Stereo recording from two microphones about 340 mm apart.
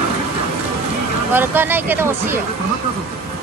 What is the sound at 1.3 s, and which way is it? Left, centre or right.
Speech, centre.